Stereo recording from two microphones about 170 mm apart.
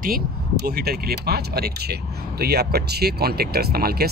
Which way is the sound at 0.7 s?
65° right (ahead or behind).